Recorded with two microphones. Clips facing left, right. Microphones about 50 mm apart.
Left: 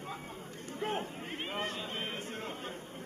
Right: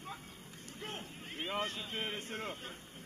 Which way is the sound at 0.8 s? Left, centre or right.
Left.